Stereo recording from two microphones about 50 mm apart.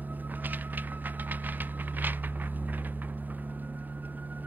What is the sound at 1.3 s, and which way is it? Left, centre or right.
Vehicle, right.